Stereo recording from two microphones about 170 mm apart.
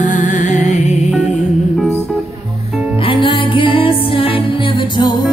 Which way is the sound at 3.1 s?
30° left (ahead or behind).